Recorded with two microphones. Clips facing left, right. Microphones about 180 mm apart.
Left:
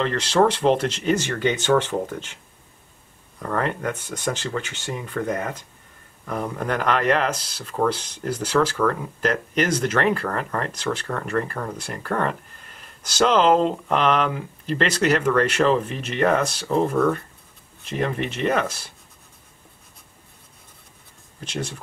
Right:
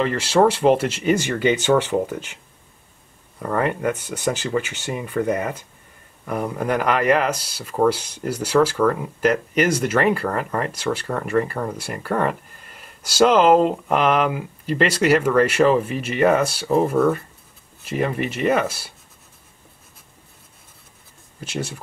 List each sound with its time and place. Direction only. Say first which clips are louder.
0.0 s speech: right 2 dB; 10° right (ahead or behind)
3.3 s speech: right 3 dB; 10° right (ahead or behind)
21.4 s speech: right 2 dB; 5° right (ahead or behind)